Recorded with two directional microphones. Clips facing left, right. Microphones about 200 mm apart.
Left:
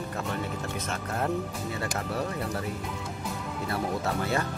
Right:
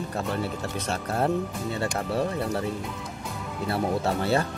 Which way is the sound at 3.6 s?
30° right (ahead or behind).